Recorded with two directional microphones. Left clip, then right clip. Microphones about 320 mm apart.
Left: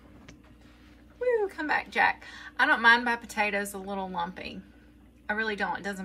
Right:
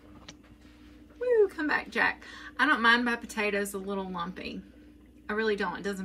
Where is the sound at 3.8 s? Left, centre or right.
Left.